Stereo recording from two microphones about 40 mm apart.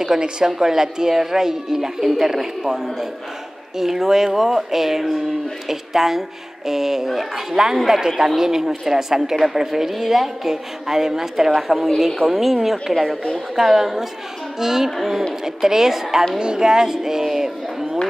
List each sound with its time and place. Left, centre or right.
0.0 s speech: centre